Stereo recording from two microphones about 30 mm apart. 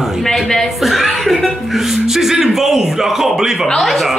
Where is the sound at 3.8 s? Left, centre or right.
Centre.